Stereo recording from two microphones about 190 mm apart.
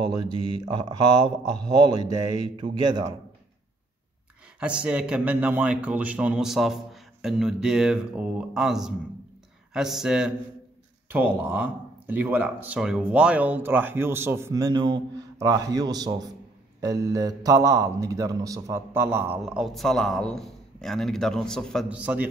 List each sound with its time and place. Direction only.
0.0 s speech: 25° right (ahead or behind)
4.6 s a man's voice: 5° right (ahead or behind)